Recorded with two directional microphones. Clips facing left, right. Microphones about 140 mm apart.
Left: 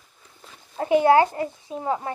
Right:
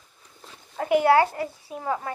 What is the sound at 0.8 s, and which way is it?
A child's voice, 25° left (ahead or behind).